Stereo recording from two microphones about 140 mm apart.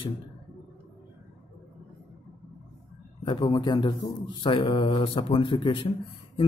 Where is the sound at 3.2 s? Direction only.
30° left (ahead or behind).